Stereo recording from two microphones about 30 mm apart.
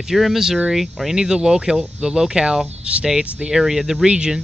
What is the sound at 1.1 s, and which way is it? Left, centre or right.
Speech, right.